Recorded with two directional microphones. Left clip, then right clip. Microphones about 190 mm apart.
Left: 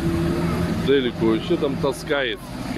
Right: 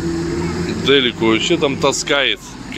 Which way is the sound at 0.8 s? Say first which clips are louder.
Right 6 dB; 5° right (ahead or behind).